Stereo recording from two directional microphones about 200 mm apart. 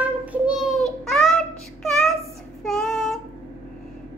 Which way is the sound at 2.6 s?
Centre (ahead or behind).